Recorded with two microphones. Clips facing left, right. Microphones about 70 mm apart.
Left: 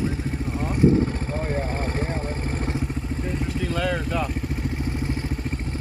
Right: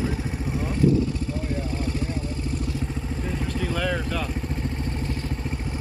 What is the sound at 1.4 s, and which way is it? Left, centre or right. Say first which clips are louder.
Vehicle: left 2 dB; left.